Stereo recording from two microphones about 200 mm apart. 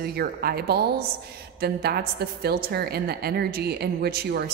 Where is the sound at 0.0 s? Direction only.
50° right (ahead or behind).